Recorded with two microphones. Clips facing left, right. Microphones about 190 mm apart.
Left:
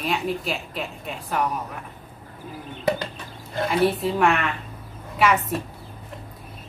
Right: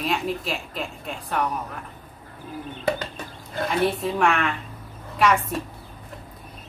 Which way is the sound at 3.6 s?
Centre (ahead or behind).